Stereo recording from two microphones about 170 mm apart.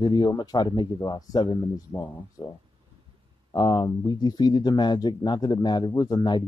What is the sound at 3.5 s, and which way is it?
Speech, 25° left (ahead or behind).